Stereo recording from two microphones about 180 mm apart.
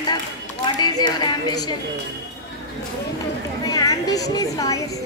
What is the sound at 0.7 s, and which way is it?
A woman's voice, 25° left (ahead or behind).